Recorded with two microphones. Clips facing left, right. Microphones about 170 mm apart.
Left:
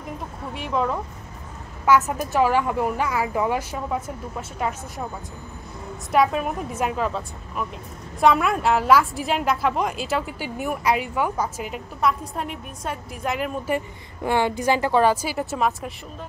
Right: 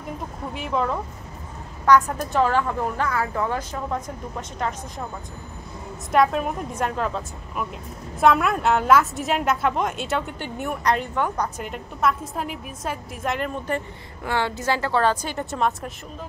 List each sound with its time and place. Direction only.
0.5 s a woman's voice: centre (ahead or behind)
6.1 s a woman's voice: centre (ahead or behind)
14.2 s a woman's voice: 15° left (ahead or behind)